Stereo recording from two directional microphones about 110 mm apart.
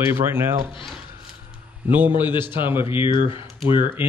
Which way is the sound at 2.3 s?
20° right (ahead or behind).